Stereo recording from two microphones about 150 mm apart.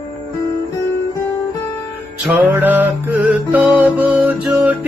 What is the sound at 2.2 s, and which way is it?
Music, 10° right (ahead or behind).